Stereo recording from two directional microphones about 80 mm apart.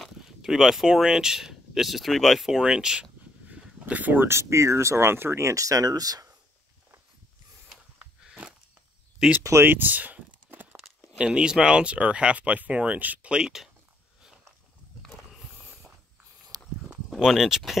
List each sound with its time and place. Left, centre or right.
0.4 s speech: centre; by 5.5 s right
5.5 s speech: right
8.3 s a sound: centre
9.4 s speech: right
9.7 s a sound: right
11.1 s speech: centre
15.5 s mechanisms: centre
16.5 s a sound: right
17.1 s speech: centre